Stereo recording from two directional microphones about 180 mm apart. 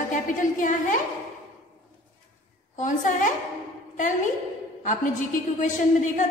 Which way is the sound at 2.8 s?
45° left (ahead or behind).